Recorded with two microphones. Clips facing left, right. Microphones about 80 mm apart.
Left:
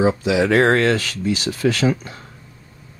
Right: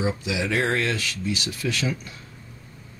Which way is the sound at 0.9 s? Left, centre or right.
Left.